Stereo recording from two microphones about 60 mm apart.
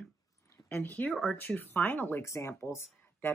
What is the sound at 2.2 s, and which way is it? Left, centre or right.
Speech, left.